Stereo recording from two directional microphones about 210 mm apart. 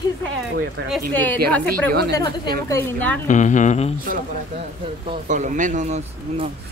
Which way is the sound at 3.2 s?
35° left (ahead or behind).